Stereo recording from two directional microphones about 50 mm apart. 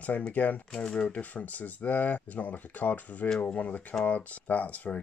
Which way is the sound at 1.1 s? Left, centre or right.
Left.